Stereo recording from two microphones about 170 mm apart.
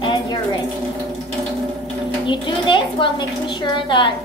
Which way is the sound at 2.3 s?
30° left (ahead or behind).